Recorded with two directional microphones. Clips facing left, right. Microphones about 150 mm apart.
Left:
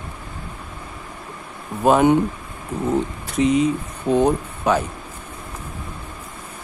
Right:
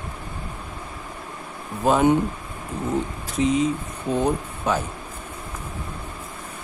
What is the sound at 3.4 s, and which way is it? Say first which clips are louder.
Speech: left 3 dB; 70° left (ahead or behind).